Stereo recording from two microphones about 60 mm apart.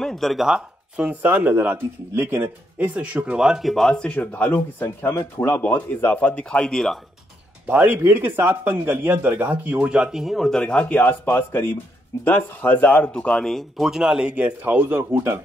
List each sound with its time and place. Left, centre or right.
0.0 s speech: centre
4.3 s speech: centre
6.5 s speech: centre
7.6 s speech: centre
13.3 s speech: centre
14.3 s speech: right